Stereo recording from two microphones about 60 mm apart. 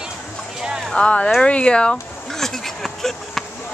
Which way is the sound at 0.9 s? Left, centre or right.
Centre.